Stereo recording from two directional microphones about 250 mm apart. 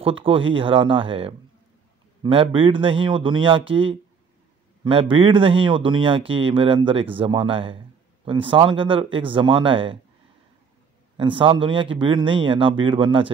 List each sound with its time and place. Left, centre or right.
0.0 s speech: right
11.1 s speech: centre